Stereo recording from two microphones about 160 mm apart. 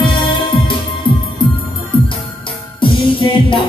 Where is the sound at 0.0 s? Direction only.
30° left (ahead or behind).